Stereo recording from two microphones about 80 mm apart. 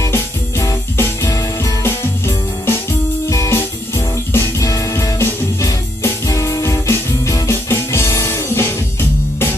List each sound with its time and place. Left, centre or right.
0.0 s music: left